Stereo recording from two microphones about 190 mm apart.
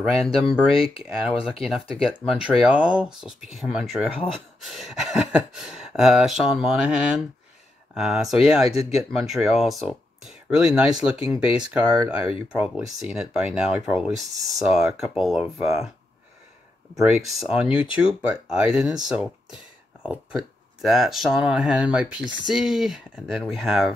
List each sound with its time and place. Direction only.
0.0 s speech: centre (ahead or behind)
1.6 s speech: centre (ahead or behind)
12.1 s speech: 30° left (ahead or behind)
12.5 s speech: 5° right (ahead or behind)
17.0 s speech: centre (ahead or behind)